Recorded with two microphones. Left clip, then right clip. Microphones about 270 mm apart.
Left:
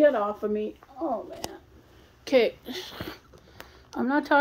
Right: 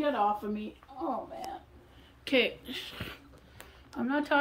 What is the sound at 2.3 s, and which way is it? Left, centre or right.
A child's voice, centre.